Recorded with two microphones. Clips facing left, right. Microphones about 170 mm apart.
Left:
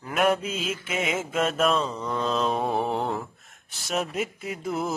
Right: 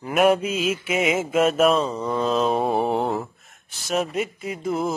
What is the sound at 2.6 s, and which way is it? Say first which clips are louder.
Mantra: right 4 dB; 30° right (ahead or behind).